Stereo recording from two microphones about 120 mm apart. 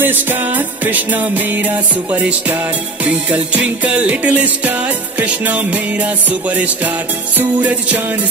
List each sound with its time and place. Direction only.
0.0 s music: 15° right (ahead or behind)